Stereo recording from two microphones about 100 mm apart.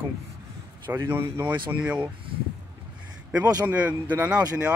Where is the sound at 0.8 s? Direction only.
25° right (ahead or behind).